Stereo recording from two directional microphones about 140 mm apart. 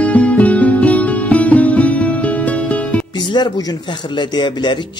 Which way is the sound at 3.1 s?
35° left (ahead or behind).